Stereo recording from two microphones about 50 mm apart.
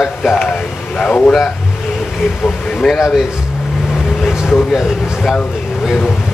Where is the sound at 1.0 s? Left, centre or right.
Left.